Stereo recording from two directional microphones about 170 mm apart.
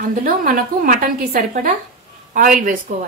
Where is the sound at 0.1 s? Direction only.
55° right (ahead or behind).